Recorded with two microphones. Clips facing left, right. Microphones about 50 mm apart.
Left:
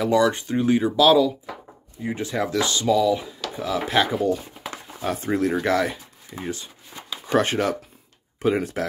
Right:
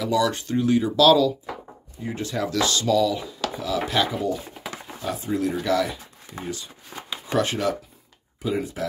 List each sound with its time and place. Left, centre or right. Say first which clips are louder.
0.0 s speech: left 3 dB; left
8.4 s speech: left 4 dB; left